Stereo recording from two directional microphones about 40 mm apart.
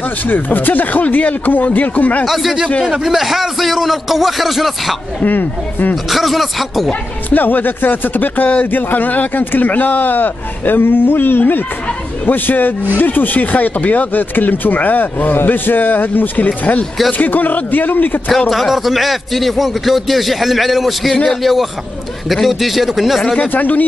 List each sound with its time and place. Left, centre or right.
0.3 s a man's voice: left
2.2 s a man's voice: centre
5.2 s a man's voice: left
6.0 s a man's voice: centre
6.9 s a man's voice: left
18.5 s a man's voice: centre
23.4 s a man's voice: left